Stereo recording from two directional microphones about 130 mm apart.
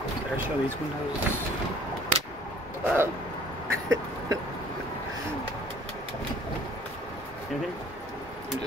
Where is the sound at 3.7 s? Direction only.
25° right (ahead or behind).